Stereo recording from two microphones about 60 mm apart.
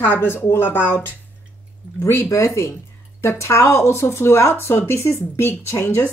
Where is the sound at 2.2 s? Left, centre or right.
Left.